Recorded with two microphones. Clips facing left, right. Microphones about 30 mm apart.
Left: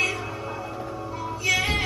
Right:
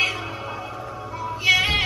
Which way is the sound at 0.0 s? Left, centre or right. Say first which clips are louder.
Right 2 dB; right.